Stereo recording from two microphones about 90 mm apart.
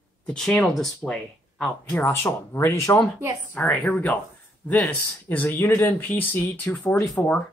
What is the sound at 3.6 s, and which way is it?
Speech, 15° left (ahead or behind).